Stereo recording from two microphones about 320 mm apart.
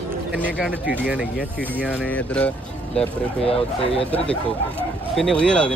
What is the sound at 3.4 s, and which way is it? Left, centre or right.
Speech, centre.